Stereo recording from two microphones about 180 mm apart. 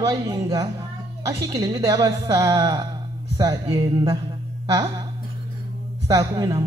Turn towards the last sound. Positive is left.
turn(degrees=-20)  # may be behind; listen again after turning